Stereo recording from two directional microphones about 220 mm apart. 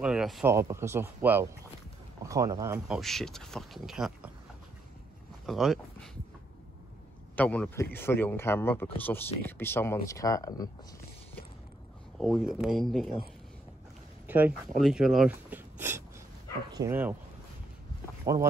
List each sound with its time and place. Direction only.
0.0 s speech: 5° right (ahead or behind)
2.9 s speech: centre (ahead or behind)
5.5 s speech: centre (ahead or behind)
7.3 s speech: 5° left (ahead or behind)
12.2 s speech: centre (ahead or behind)
14.2 s a sound: 10° right (ahead or behind)
14.8 s speech: centre (ahead or behind)
18.2 s speech: 15° right (ahead or behind)